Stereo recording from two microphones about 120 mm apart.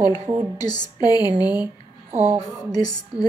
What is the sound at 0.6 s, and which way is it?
Speech, 35° left (ahead or behind).